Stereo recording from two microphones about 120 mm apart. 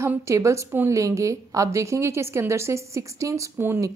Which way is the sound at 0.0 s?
25° right (ahead or behind).